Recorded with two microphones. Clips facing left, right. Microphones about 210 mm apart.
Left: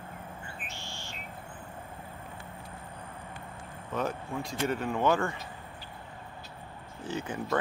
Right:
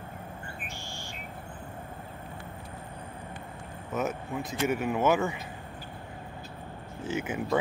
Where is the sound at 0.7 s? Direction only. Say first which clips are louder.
Right 2 dB; 15° right (ahead or behind).